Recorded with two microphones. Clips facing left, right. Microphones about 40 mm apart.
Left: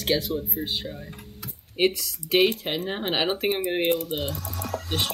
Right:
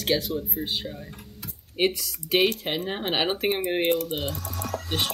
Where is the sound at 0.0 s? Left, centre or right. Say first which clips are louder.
Even; centre.